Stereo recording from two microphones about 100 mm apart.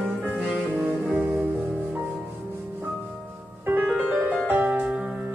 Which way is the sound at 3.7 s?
15° right (ahead or behind).